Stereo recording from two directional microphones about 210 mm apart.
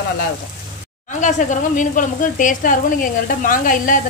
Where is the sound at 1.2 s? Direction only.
35° left (ahead or behind).